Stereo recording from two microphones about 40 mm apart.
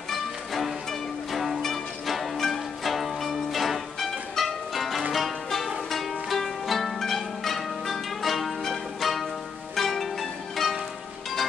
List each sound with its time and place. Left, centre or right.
0.1 s music: centre